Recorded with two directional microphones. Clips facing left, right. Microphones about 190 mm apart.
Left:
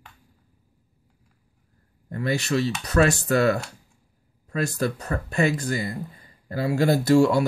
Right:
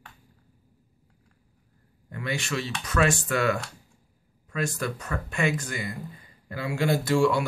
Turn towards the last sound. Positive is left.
turn(degrees=40)  # may be behind; listen again after turning